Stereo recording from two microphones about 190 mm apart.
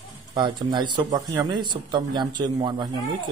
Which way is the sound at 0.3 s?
20° right (ahead or behind).